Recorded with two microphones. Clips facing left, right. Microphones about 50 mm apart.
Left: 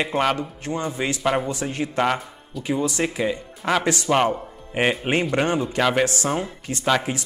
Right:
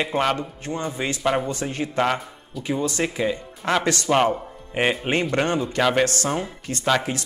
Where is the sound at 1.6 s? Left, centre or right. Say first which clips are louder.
Left 1 dB; left.